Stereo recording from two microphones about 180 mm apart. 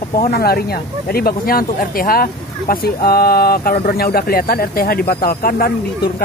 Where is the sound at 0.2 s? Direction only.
55° left (ahead or behind).